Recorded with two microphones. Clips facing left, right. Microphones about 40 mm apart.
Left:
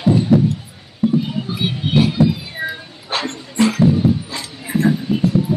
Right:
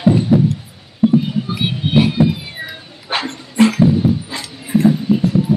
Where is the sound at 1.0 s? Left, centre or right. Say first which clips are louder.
Right 4 dB; centre.